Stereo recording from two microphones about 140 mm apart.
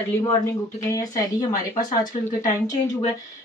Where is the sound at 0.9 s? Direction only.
25° left (ahead or behind).